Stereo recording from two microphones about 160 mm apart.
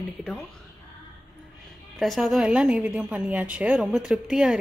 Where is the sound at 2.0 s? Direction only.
Centre (ahead or behind).